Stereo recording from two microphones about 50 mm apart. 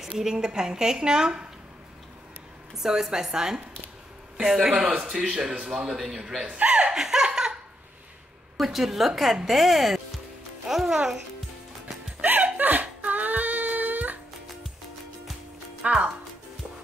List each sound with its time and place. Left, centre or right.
0.1 s a woman's voice: centre
2.7 s a woman's voice: centre
6.4 s laughter: right
8.5 s a woman's voice: centre
12.2 s a sound: right
15.8 s speech: right